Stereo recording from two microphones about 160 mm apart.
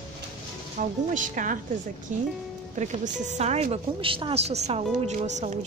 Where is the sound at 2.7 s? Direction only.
50° right (ahead or behind).